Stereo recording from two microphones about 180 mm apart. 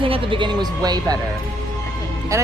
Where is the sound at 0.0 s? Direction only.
30° right (ahead or behind).